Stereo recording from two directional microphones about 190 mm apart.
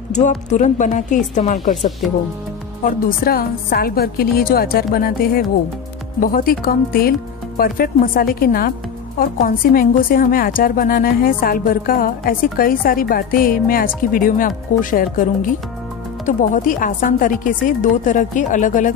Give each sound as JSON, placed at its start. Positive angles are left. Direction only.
{"t": 0.1, "sound": "speech", "side_deg": 40}
{"t": 1.8, "sound": "speech", "side_deg": 0}
{"t": 2.8, "sound": "a woman's voice", "side_deg": 50}
{"t": 16.3, "sound": "a woman's voice", "side_deg": 40}